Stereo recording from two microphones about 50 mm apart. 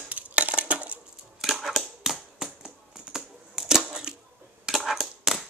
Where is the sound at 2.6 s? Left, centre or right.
Centre.